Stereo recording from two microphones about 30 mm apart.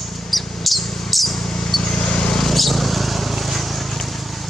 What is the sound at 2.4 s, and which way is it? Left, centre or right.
Vehicle, centre.